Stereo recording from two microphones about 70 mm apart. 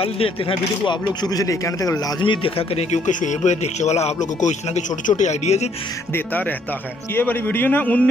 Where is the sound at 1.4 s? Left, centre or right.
Left.